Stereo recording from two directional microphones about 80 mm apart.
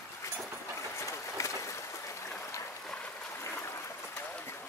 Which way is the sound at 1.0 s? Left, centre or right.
Left.